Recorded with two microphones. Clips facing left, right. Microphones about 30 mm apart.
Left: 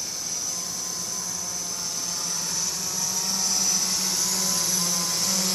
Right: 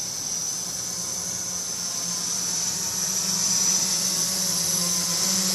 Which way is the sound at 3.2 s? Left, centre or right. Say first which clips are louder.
Right 1 dB; left.